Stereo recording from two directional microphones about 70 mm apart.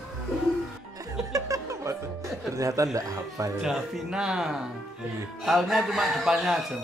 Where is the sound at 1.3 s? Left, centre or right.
Right.